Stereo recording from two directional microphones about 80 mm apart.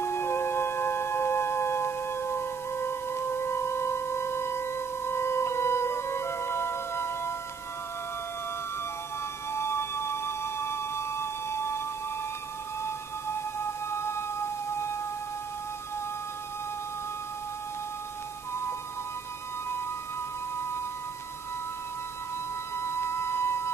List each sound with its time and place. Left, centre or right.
0.0 s music: left
9.5 s music: left
12.8 s music: left
18.5 s music: left
22.8 s a sound: left